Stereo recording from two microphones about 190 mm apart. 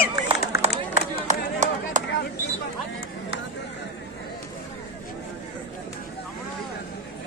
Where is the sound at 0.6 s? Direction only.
35° right (ahead or behind).